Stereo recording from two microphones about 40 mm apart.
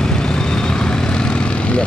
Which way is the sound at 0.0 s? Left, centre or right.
Centre.